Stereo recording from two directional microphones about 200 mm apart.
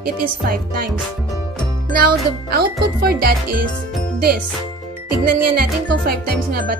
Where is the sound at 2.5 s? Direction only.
50° right (ahead or behind).